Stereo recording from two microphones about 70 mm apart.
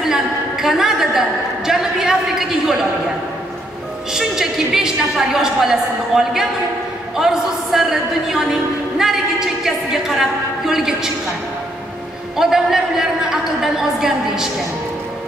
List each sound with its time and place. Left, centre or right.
0.0 s a sound: centre
4.1 s a woman's voice: centre
12.4 s a woman's voice: centre